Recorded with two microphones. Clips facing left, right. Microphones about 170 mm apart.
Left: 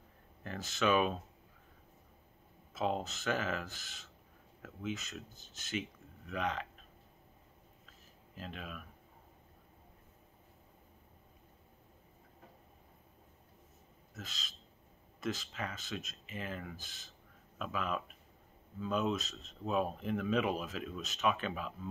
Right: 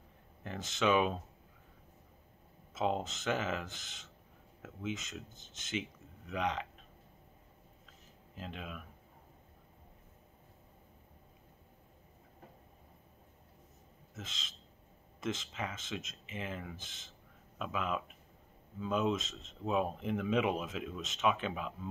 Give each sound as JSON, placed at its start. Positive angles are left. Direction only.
{"t": 0.4, "sound": "speech", "side_deg": -20}
{"t": 2.7, "sound": "speech", "side_deg": -20}
{"t": 8.4, "sound": "speech", "side_deg": -20}
{"t": 14.1, "sound": "speech", "side_deg": -25}